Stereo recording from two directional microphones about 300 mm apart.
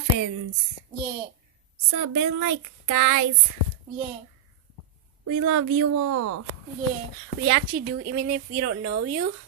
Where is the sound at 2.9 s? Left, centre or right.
Right.